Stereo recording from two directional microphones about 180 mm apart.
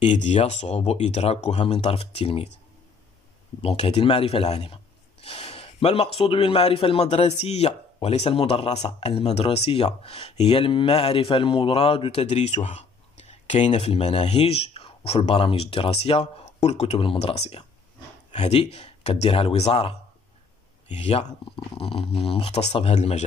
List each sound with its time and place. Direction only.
0.0 s speech: 40° left (ahead or behind)
3.6 s speech: 35° left (ahead or behind)
5.2 s a sound: 30° left (ahead or behind)
6.1 s speech: 30° left (ahead or behind)